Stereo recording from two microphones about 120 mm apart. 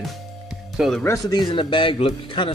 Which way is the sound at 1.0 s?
30° left (ahead or behind).